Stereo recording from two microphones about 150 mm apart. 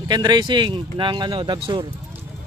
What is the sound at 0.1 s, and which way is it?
Speech, 30° right (ahead or behind).